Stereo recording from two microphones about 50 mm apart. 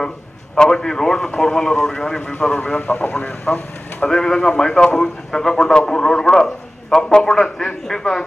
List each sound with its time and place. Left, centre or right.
0.6 s a man's voice: centre
2.3 s a man's voice: left
2.9 s speech: left
3.2 s a man's voice: left